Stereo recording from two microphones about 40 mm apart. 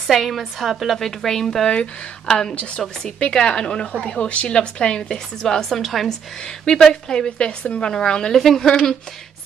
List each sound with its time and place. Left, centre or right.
0.0 s a woman's voice: centre
0.9 s a woman's voice: centre
1.7 s a woman's voice: left
2.5 s a woman's voice: left
3.0 s a woman's voice: centre
4.2 s a woman's voice: left; by 5.7 s centre
5.7 s a woman's voice: centre
6.6 s a woman's voice: centre
8.3 s a woman's voice: centre